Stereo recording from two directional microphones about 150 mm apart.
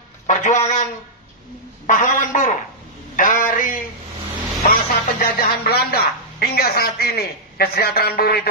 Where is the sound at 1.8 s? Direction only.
55° left (ahead or behind).